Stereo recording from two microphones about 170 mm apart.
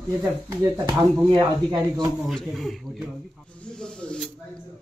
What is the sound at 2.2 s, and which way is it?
Speech, centre (ahead or behind).